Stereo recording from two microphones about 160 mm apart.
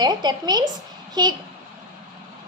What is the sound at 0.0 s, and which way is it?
A woman's voice, 25° right (ahead or behind).